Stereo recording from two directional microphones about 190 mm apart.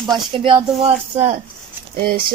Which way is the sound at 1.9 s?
55° right (ahead or behind).